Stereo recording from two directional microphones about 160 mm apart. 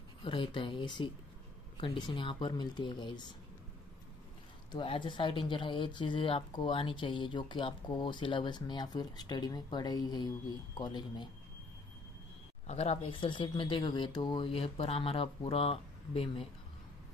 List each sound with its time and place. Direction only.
0.2 s speech: 30° left (ahead or behind)
4.6 s speech: 30° left (ahead or behind)
12.6 s speech: 40° left (ahead or behind)